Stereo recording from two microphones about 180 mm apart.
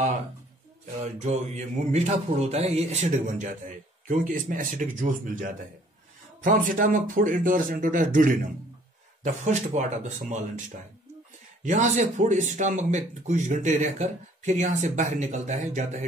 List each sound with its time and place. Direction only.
1.0 s speech: 40° right (ahead or behind)
11.6 s speech: 40° right (ahead or behind)